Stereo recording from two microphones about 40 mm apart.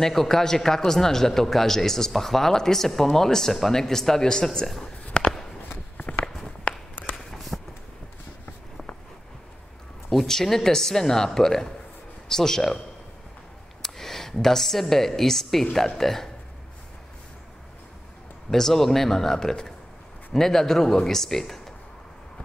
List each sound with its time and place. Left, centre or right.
0.0 s a man's voice: centre
5.2 s walk: left
6.4 s walk: centre
7.3 s a sound: centre
10.2 s a man's voice: centre
13.8 s a woman's voice: centre
18.5 s a man's voice: centre